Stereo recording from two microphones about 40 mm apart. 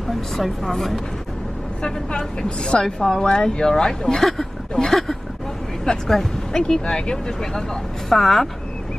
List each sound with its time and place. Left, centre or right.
0.4 s speech: centre
1.8 s a woman's voice: left
8.1 s speech: centre